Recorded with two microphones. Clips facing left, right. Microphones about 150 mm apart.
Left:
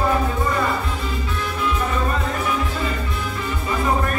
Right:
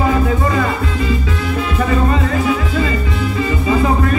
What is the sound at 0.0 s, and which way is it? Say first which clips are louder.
Music: right 5 dB; 90° right.